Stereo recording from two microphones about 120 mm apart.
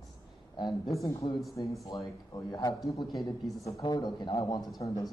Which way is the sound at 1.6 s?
40° left (ahead or behind).